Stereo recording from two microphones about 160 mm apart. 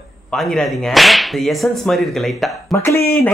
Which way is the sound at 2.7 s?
15° left (ahead or behind).